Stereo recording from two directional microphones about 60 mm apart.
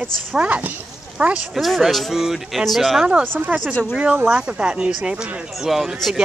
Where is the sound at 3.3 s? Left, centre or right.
Right.